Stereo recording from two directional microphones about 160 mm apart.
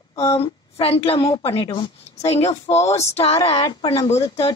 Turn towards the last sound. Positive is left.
turn(degrees=40)  # may be behind; listen again after turning